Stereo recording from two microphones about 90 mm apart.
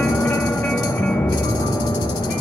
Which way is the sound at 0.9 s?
20° left (ahead or behind).